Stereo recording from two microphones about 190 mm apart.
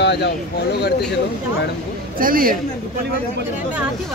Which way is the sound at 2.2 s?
50° right (ahead or behind).